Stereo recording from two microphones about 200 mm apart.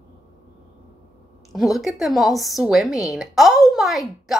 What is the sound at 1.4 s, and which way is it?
A woman's voice, centre (ahead or behind).